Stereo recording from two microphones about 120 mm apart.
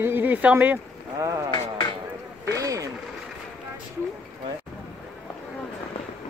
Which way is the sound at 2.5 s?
25° right (ahead or behind).